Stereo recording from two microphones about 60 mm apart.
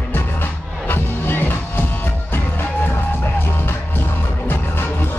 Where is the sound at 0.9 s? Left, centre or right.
Left.